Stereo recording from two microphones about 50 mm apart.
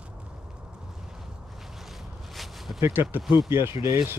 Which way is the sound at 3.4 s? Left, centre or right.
Right.